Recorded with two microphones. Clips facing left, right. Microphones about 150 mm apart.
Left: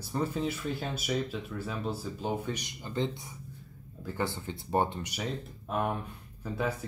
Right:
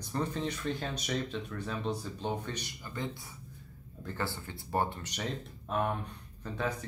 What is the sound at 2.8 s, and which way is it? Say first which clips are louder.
Speech: left 9 dB; 25° left (ahead or behind).